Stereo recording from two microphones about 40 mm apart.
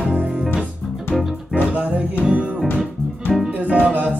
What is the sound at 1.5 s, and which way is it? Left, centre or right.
Music, right.